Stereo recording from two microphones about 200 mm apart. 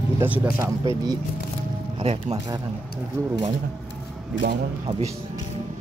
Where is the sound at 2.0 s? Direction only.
30° right (ahead or behind).